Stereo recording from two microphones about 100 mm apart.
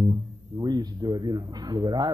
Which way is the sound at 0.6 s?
45° right (ahead or behind).